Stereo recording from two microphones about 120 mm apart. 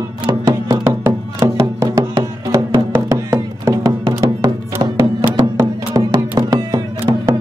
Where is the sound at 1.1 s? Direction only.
25° right (ahead or behind).